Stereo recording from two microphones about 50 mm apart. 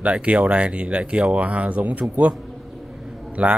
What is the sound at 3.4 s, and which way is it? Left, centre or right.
Speech, right.